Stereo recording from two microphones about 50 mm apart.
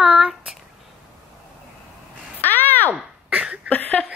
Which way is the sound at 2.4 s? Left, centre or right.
Left.